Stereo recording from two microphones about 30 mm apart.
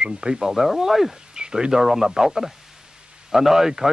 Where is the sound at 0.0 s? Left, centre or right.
Right.